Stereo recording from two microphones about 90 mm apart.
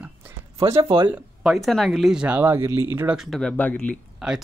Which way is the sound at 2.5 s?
30° right (ahead or behind).